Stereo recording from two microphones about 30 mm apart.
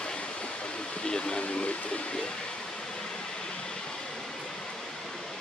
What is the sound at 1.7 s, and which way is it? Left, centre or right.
Speech, left.